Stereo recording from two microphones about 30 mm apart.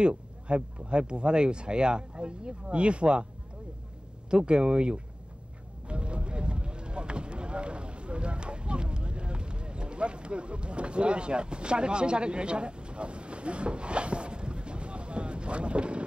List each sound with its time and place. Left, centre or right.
0.0 s speech: right
4.3 s speech: right
5.9 s a sound: right